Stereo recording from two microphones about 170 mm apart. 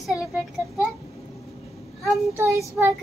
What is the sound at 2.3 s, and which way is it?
Child singing, 15° right (ahead or behind).